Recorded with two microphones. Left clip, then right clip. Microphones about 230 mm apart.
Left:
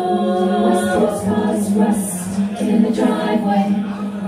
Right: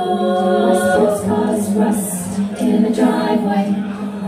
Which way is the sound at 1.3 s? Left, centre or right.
Right.